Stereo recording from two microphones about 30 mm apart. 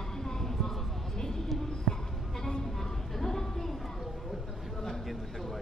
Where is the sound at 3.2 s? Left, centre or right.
Centre.